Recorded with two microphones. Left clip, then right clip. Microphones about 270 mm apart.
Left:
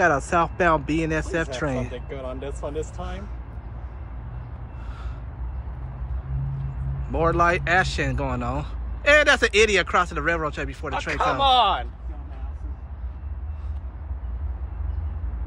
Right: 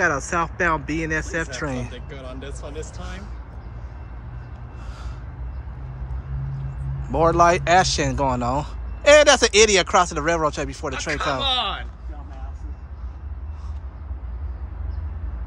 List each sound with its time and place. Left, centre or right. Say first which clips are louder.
0.0 s speech: left 1 dB; centre
1.9 s speech: left 4 dB; left
7.1 s speech: right 4 dB; centre
10.9 s speech: left 2 dB; centre